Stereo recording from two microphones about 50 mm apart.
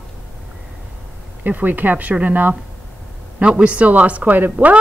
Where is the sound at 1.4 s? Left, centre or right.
Right.